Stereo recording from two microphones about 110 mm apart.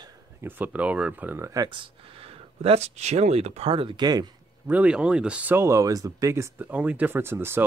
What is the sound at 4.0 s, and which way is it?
Speech, 40° right (ahead or behind).